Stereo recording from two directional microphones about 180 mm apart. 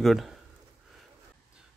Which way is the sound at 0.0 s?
Centre (ahead or behind).